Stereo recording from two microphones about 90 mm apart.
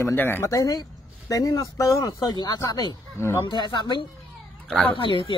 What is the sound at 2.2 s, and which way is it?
Speech, 55° left (ahead or behind).